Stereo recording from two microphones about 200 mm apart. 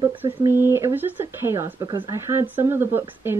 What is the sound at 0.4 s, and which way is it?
Speech, 10° right (ahead or behind).